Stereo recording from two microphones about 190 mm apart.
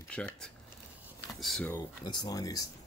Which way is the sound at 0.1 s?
5° left (ahead or behind).